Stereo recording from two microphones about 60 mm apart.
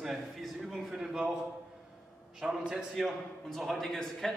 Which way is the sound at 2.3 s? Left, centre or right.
Centre.